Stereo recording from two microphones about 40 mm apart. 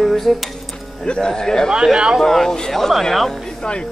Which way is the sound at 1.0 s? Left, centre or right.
Left.